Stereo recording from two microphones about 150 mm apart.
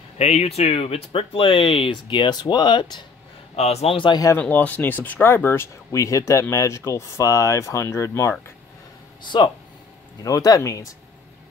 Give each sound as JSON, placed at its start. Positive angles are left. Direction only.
{"t": 0.2, "sound": "speech", "side_deg": 45}
{"t": 3.5, "sound": "speech", "side_deg": 45}
{"t": 4.4, "sound": "speech", "side_deg": 10}
{"t": 10.2, "sound": "speech", "side_deg": 25}